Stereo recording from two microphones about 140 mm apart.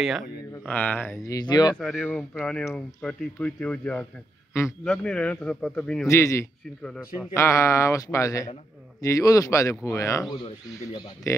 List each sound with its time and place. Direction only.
0.7 s speech: 10° left (ahead or behind); by 1.8 s 30° left (ahead or behind)
2.0 s speech: 15° left (ahead or behind)
6.0 s speech: 20° left (ahead or behind)
10.3 s speech: 30° left (ahead or behind)
11.3 s speech: 20° left (ahead or behind)